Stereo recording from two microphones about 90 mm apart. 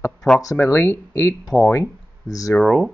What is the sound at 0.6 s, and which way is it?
Speech, 25° left (ahead or behind).